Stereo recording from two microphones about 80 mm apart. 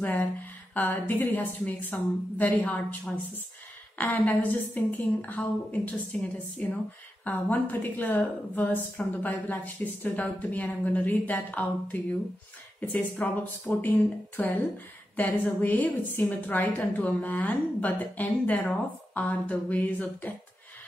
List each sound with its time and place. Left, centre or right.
0.0 s a woman's voice: left